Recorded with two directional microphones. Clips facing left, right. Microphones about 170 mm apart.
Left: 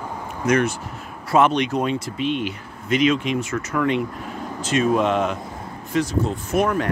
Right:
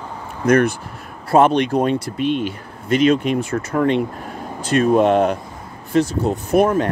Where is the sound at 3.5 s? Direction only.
35° right (ahead or behind).